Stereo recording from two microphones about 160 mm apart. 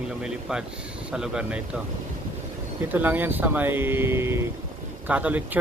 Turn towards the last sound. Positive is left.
turn(degrees=-10)  # may be behind; listen again after turning